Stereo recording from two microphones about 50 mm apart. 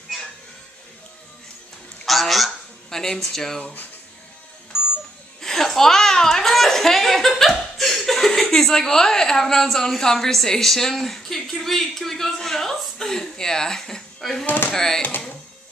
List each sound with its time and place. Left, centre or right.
2.0 s honk: centre
3.6 s speech: left
4.7 s music: centre
5.4 s a woman's voice: centre
15.0 s speech: left